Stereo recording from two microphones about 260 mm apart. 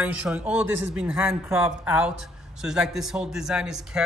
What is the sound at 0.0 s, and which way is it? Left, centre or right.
A man's voice, centre.